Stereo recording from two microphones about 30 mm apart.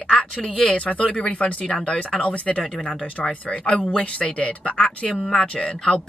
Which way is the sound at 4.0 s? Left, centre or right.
Left.